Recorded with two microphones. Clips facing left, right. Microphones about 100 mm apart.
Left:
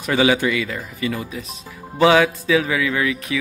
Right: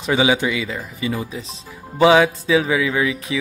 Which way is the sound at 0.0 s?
15° right (ahead or behind).